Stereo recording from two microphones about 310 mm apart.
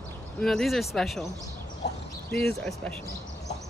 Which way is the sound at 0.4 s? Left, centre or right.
Centre.